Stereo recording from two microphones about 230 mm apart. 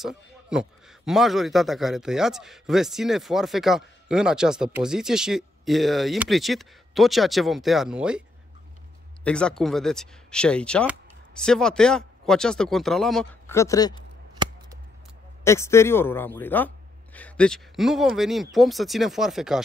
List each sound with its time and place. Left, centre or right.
0.0 s a man's voice: centre
9.2 s a man's voice: centre
15.4 s a man's voice: centre